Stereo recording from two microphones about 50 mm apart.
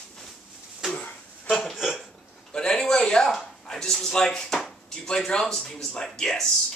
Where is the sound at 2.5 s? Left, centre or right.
Centre.